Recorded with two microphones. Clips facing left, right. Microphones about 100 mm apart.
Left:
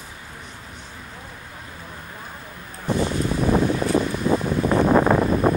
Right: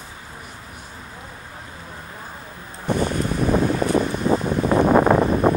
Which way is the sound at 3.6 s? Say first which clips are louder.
Right 1 dB; 25° right (ahead or behind).